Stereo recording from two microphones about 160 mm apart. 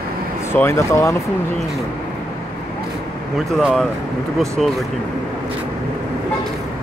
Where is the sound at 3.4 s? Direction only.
Centre (ahead or behind).